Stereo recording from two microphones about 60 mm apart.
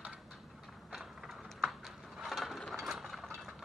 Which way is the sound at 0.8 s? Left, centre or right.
Centre.